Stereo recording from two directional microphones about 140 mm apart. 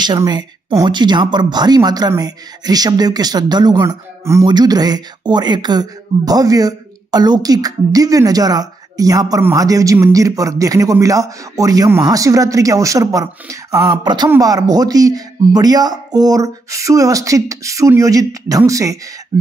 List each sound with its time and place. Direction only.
0.0 s speech: 30° right (ahead or behind)